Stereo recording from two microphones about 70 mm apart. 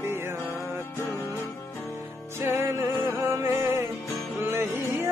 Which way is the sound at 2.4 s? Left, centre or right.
Right.